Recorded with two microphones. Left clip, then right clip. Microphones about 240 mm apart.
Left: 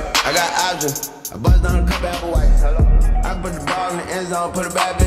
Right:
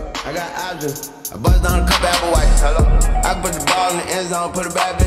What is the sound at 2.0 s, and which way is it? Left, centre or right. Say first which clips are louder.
Music: right 6 dB; right.